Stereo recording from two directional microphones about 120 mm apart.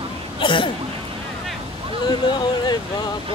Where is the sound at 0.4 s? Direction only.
45° left (ahead or behind).